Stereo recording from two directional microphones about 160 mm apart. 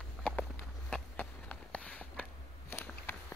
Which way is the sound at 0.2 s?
5° left (ahead or behind).